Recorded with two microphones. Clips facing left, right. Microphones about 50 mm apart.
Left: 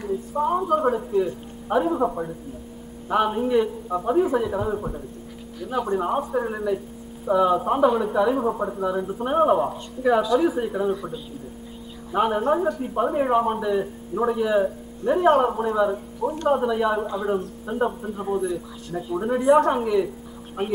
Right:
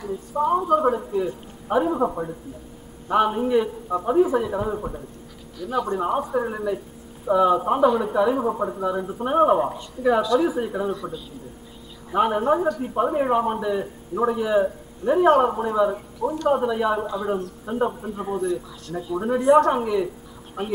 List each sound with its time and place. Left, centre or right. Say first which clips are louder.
0.3 s a man's voice: right 3 dB; centre
5.6 s speech: even; centre
5.9 s a man's voice: even; centre
11.0 s a man's voice: even; centre
12.1 s a man's voice: right 1 dB; centre
20.6 s speech: left 2 dB; centre